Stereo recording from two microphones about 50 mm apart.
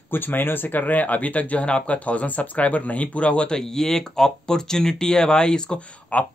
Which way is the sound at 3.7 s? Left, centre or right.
Centre.